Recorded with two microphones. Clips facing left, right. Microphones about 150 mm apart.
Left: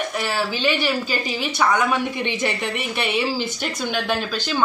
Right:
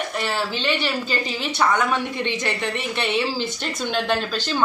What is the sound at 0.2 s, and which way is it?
A woman's voice, 5° left (ahead or behind).